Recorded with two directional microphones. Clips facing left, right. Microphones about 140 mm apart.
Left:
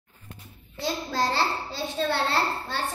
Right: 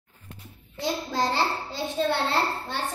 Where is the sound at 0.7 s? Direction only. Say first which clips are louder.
Right 1 dB; 20° right (ahead or behind).